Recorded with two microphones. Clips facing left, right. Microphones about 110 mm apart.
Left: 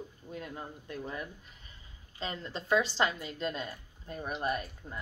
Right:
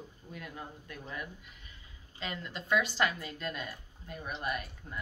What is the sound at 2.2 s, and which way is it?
Speech, 30° left (ahead or behind).